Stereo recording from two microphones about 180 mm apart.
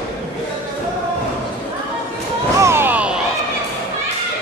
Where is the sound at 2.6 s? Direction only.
15° right (ahead or behind).